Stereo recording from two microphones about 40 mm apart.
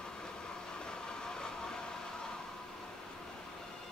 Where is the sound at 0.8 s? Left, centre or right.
Centre.